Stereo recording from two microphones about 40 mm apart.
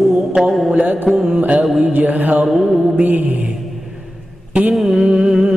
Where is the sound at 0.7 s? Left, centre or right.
Right.